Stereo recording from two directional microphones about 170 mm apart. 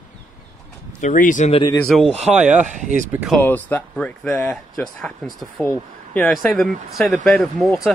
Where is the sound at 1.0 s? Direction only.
50° left (ahead or behind).